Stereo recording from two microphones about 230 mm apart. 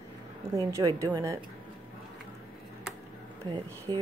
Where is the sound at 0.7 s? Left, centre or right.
Centre.